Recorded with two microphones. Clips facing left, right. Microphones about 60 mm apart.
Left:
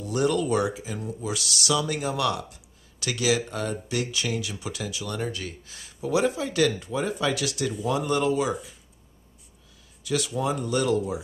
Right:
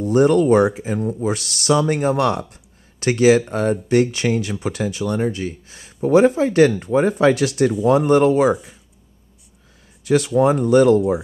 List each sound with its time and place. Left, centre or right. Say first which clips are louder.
0.0 s speech: right 10 dB; right
5.9 s speech: right 11 dB; right
10.0 s speech: right 11 dB; right